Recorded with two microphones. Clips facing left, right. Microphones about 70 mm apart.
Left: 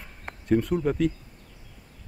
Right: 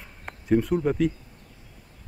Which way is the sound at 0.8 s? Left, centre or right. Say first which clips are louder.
Right 1 dB; centre.